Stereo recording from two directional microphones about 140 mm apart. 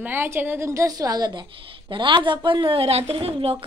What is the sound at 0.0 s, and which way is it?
A woman's voice, 15° right (ahead or behind).